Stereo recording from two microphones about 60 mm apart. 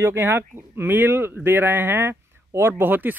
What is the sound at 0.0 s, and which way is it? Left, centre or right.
Speech, right.